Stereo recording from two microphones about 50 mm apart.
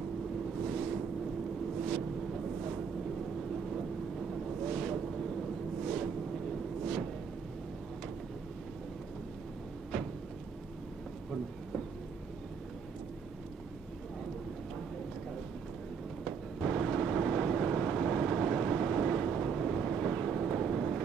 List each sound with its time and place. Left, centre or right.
0.6 s boat: centre
16.3 s vehicle: centre